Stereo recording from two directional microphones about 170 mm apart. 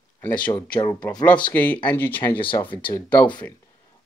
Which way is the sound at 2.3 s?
30° left (ahead or behind).